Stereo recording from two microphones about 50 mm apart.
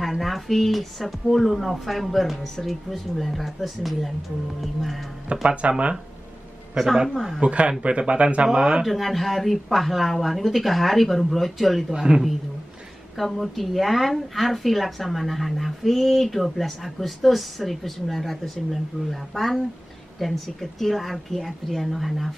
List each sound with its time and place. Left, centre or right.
0.0 s a woman's voice: centre
5.3 s speech: right
7.3 s speech: right
8.8 s a woman's voice: centre
11.9 s a woman's voice: centre
13.2 s a woman's voice: centre